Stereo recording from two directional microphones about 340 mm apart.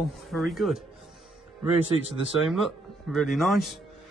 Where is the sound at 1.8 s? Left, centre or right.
Centre.